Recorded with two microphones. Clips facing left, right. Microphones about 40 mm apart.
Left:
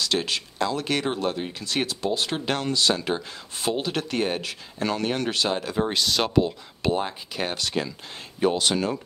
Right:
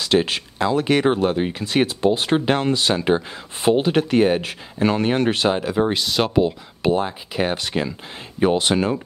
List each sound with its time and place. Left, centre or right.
0.0 s speech: right
5.6 s speech: centre
7.4 s speech: right